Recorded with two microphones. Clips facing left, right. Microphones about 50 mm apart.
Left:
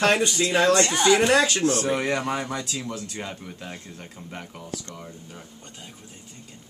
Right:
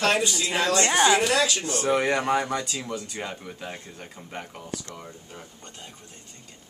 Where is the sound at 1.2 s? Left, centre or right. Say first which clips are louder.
Left 3 dB; left.